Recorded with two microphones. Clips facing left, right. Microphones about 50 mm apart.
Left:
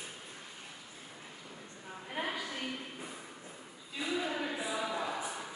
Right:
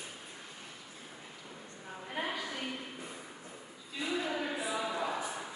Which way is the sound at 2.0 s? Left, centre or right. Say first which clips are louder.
Even; centre.